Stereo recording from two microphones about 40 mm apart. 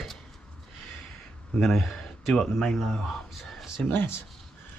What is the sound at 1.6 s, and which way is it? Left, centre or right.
Speech, centre.